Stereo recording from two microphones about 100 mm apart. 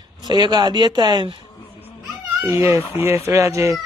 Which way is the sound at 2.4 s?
25° right (ahead or behind).